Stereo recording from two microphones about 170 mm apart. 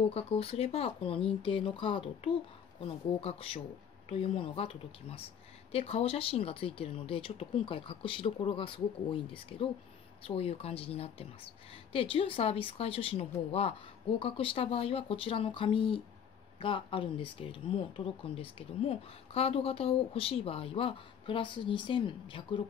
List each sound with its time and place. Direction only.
0.0 s speech: 35° left (ahead or behind)